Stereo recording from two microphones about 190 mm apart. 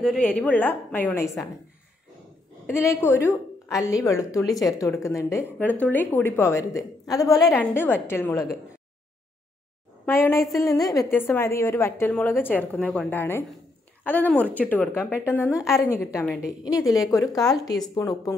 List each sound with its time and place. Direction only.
0.0 s a woman's voice: 5° left (ahead or behind)
2.6 s a woman's voice: 15° left (ahead or behind)
10.0 s a woman's voice: 10° left (ahead or behind)